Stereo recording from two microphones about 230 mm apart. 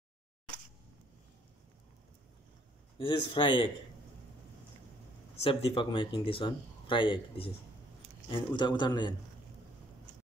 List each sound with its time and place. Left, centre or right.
3.0 s speech: left
5.4 s speech: left